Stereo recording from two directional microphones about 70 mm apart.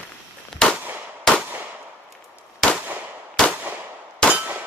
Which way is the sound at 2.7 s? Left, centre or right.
Right.